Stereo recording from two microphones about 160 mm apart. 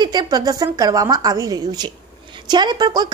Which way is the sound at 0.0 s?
25° right (ahead or behind).